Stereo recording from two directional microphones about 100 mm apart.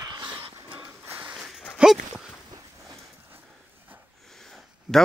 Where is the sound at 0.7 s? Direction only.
20° right (ahead or behind).